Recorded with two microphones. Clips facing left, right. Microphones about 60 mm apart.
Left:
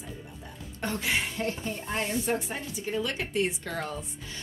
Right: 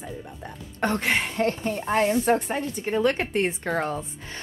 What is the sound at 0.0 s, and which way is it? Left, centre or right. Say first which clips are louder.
Speech: right 6 dB; right.